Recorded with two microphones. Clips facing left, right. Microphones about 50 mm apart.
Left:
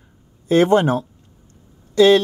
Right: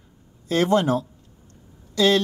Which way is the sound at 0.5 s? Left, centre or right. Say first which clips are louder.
Left 5 dB; left.